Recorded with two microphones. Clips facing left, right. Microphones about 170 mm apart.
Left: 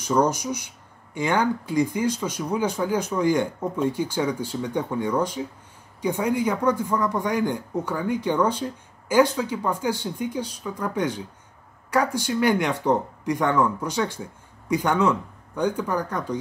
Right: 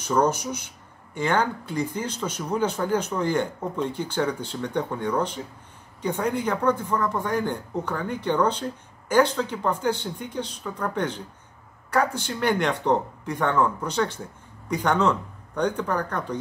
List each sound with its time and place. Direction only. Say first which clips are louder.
0.0 s speech: left 1 dB; 10° left (ahead or behind)
12.3 s speech: left 2 dB; 10° left (ahead or behind)